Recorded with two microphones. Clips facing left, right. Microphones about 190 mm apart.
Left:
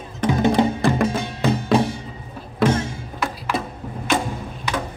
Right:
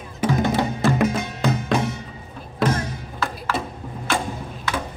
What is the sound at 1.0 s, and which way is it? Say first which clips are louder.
Music: left 1 dB; 30° left (ahead or behind).